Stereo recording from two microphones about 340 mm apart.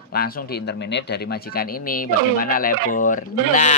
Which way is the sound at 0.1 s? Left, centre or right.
Left.